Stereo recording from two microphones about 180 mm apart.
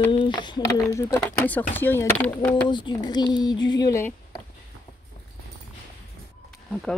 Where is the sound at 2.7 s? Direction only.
25° left (ahead or behind).